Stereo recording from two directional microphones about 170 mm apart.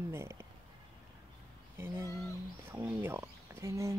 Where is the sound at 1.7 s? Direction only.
15° right (ahead or behind).